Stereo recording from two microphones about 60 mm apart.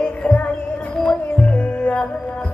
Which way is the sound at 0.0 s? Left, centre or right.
Left.